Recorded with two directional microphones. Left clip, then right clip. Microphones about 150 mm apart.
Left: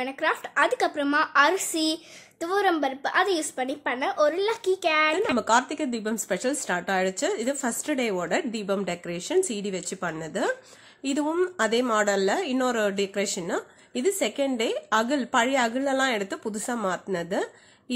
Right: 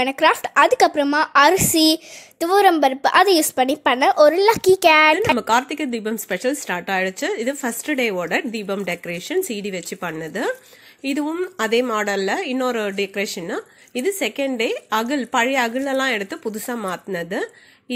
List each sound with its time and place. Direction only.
0.0 s a woman's voice: 50° right (ahead or behind)
5.4 s a woman's voice: 15° right (ahead or behind)